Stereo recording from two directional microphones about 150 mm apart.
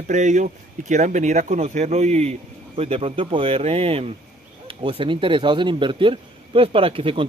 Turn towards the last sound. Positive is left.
turn(degrees=-40)  # may be behind; listen again after turning